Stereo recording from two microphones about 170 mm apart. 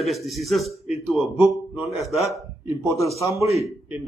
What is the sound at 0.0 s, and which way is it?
A man's voice, centre (ahead or behind).